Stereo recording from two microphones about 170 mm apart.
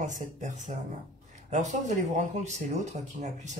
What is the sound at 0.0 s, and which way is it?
Speech, 45° right (ahead or behind).